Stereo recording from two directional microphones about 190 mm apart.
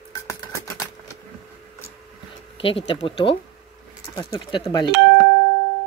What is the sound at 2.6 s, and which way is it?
Speech, 30° left (ahead or behind).